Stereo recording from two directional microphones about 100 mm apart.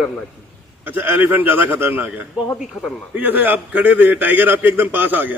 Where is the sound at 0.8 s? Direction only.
20° right (ahead or behind).